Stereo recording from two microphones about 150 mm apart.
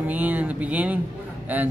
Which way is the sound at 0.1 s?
10° right (ahead or behind).